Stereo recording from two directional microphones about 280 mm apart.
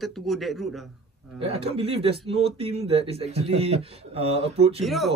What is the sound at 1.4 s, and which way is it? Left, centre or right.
Speech, right.